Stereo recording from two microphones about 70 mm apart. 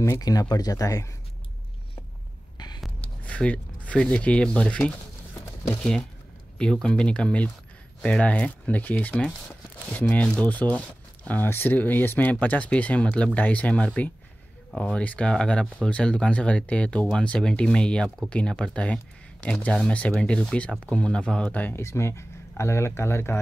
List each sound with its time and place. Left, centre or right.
0.2 s speech: left
2.5 s a sound: left
3.3 s speech: centre
19.9 s speech: centre
21.7 s speech: left